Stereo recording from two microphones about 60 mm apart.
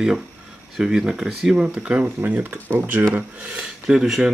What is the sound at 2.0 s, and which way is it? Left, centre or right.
Speech, right.